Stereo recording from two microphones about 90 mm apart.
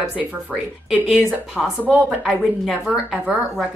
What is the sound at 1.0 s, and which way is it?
A woman's voice, 10° right (ahead or behind).